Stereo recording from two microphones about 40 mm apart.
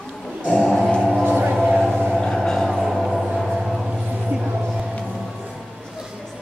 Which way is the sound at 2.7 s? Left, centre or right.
Centre.